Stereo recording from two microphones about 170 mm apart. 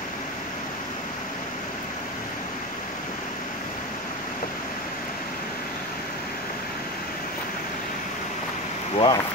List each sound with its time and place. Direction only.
8.9 s speech: 30° left (ahead or behind)